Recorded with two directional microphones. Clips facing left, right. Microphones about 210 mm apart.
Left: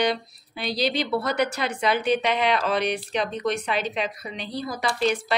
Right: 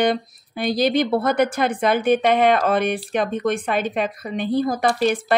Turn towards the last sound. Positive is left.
turn(degrees=-50)  # may be behind; listen again after turning